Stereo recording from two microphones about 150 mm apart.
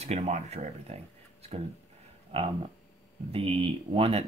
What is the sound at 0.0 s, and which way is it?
Speech, 45° right (ahead or behind).